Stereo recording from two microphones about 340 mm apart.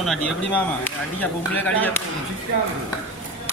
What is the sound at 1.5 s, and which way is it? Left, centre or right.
Speech, centre.